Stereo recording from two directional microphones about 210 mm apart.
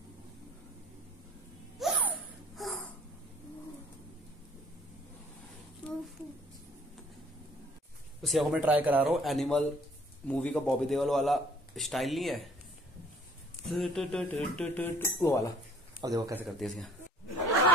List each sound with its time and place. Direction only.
1.8 s a sound: centre (ahead or behind)
8.2 s a man's voice: centre (ahead or behind)
13.7 s a man's voice: centre (ahead or behind)
16.0 s speech: 15° right (ahead or behind)
16.4 s a man's voice: centre (ahead or behind)